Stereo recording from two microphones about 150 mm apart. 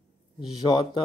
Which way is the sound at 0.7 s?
30° left (ahead or behind).